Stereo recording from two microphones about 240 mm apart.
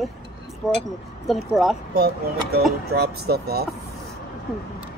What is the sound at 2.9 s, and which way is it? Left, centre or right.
Speech, right.